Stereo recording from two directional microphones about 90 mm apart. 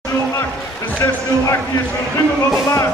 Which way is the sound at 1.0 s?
25° left (ahead or behind).